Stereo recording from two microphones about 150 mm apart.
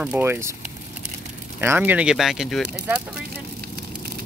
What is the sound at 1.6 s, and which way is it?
Speech, 15° right (ahead or behind).